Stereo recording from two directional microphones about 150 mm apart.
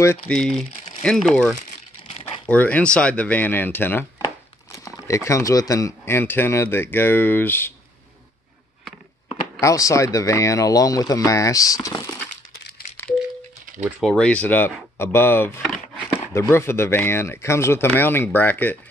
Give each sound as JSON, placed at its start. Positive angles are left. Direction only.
{"t": 0.3, "sound": "speech", "side_deg": 5}
{"t": 9.6, "sound": "speech", "side_deg": 20}
{"t": 13.8, "sound": "speech", "side_deg": -5}
{"t": 14.1, "sound": "speech", "side_deg": 10}